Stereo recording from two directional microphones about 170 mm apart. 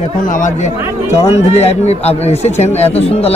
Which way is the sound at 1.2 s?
40° left (ahead or behind).